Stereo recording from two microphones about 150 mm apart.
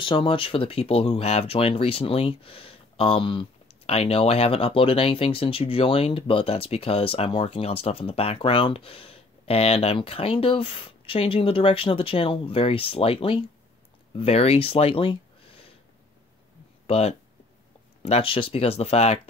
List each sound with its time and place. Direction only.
0.0 s speech: 35° left (ahead or behind)
16.8 s speech: 45° left (ahead or behind)